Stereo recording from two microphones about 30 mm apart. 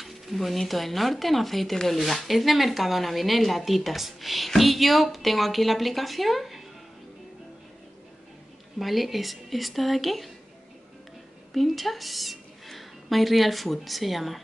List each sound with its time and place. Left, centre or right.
0.0 s a sound: centre
0.7 s a woman's voice: centre
8.7 s a woman's voice: centre
11.5 s a woman's voice: centre